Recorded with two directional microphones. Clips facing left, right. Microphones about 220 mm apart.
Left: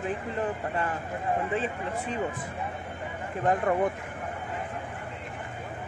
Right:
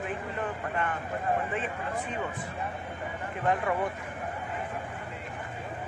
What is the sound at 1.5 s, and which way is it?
Speech, 30° left (ahead or behind).